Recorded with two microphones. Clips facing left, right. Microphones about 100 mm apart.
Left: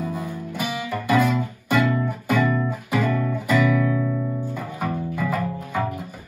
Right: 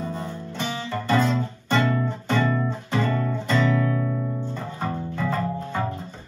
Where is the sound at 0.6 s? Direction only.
10° left (ahead or behind).